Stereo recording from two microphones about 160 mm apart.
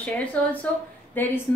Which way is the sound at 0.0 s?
10° left (ahead or behind).